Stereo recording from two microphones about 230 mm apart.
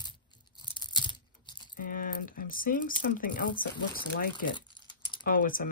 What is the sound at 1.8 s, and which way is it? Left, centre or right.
Speech, left.